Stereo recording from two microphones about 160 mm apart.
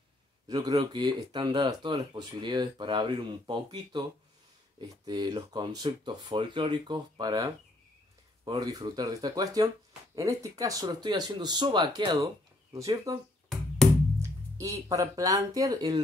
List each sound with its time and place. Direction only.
0.5 s speech: 25° right (ahead or behind)
14.2 s speech: 20° right (ahead or behind)